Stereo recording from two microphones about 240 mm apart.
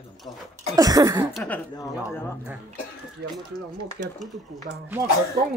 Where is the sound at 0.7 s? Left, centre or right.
Centre.